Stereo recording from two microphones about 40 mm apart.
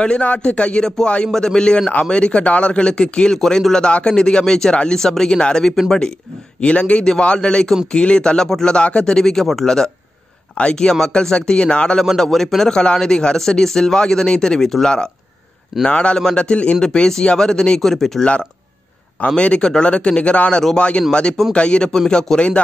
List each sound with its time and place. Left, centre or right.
0.0 s a man's voice: left
8.7 s speech: left; by 9.7 s centre
10.5 s a man's voice: left
12.0 s speech: centre
12.7 s a man's voice: centre
16.8 s speech: centre
19.2 s a man's voice: left
21.9 s speech: centre